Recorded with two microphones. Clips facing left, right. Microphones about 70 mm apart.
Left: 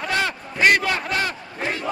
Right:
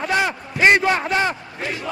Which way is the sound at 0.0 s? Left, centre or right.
Centre.